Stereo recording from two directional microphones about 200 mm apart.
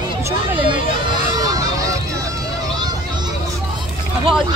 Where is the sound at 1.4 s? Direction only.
20° right (ahead or behind).